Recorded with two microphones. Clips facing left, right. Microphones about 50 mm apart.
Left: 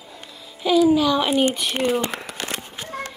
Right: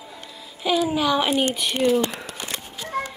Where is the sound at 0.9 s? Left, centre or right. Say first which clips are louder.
Left 4 dB; centre.